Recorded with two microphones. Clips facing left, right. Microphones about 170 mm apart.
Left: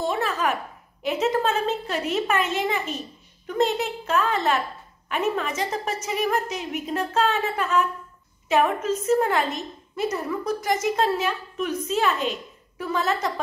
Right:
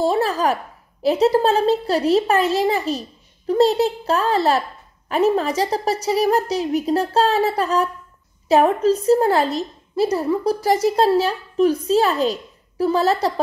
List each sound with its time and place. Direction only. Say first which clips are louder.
0.0 s a child's voice: right 6 dB; 35° right (ahead or behind)